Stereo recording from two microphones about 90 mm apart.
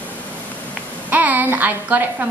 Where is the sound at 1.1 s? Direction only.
20° right (ahead or behind).